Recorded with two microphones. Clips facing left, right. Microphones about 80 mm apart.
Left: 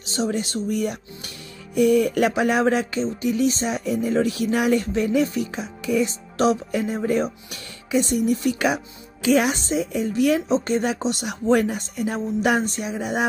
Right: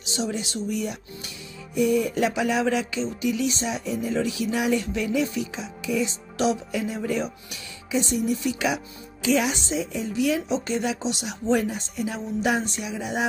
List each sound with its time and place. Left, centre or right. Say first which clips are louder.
0.0 s speech: left 4 dB; left